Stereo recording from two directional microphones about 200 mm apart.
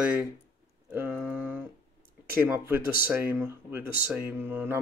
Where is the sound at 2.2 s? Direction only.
10° right (ahead or behind).